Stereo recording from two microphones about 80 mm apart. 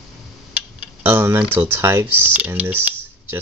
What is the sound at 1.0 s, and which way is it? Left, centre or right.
Speech, right.